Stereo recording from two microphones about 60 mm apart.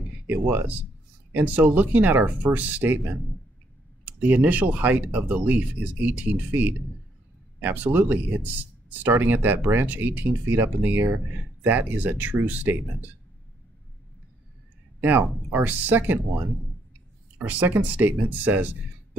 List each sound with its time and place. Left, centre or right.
0.5 s speech: right
15.0 s speech: right
17.4 s speech: right